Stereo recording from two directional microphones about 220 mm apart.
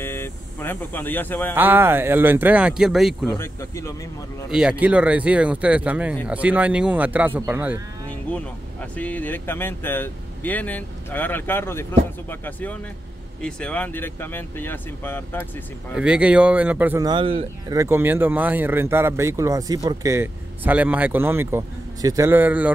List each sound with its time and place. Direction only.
0.0 s a sound: 10° left (ahead or behind)
1.5 s speech: 10° right (ahead or behind)
3.3 s speech: 15° left (ahead or behind)
4.5 s speech: 5° right (ahead or behind)
8.9 s speech: 5° left (ahead or behind)
15.9 s speech: 5° right (ahead or behind)
17.1 s speech: 25° right (ahead or behind)
17.7 s speech: 10° right (ahead or behind)